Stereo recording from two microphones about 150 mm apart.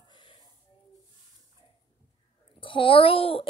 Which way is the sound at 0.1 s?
30° left (ahead or behind).